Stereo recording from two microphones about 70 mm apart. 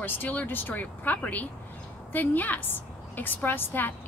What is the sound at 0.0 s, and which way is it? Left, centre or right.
A woman's voice, left.